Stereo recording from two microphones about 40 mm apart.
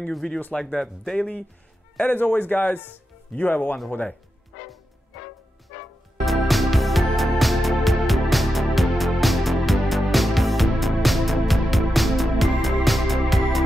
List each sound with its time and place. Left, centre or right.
0.2 s speech: left
0.6 s speech: centre
2.0 s speech: left
3.3 s speech: left
6.2 s music: centre